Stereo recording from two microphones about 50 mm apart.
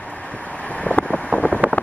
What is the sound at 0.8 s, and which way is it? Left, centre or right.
Vehicle, left.